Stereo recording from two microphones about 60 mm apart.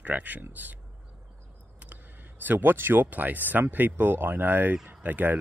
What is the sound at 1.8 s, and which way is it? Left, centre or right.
Speech, right.